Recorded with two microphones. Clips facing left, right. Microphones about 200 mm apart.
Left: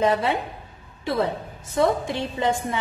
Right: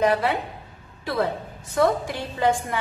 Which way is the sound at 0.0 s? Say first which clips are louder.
Even; 25° left (ahead or behind).